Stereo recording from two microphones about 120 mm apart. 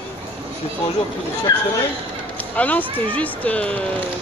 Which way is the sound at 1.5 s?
30° left (ahead or behind).